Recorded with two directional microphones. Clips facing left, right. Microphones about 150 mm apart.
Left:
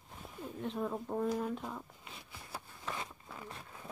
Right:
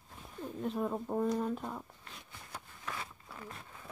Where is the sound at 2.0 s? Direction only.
10° left (ahead or behind).